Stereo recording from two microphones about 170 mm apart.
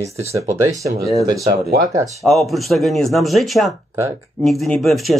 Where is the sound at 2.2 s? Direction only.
Centre (ahead or behind).